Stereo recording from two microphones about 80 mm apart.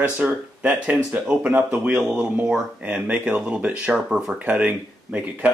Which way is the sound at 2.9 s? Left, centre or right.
Centre.